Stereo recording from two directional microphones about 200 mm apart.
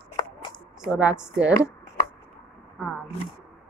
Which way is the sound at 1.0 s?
5° right (ahead or behind).